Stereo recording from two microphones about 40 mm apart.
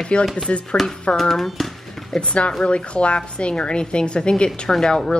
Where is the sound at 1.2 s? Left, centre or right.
Centre.